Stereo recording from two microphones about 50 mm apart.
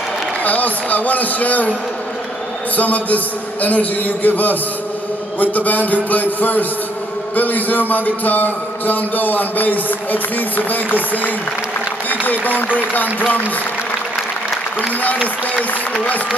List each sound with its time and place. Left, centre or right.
0.4 s a man's voice: left
12.3 s a man's voice: left